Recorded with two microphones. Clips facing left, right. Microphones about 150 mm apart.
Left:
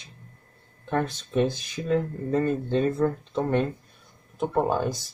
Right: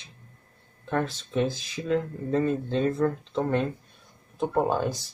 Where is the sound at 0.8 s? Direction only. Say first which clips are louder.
Left 1 dB; 15° left (ahead or behind).